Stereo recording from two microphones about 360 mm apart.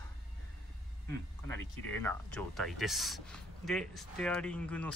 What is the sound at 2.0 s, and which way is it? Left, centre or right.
A man's voice, centre.